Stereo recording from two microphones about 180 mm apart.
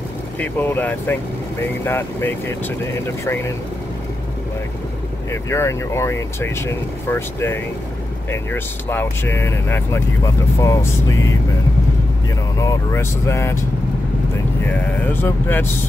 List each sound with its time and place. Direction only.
0.4 s speech: 10° left (ahead or behind)
5.3 s speech: 15° left (ahead or behind)
12.5 s speech: 15° left (ahead or behind)
15.2 s speech: 10° left (ahead or behind)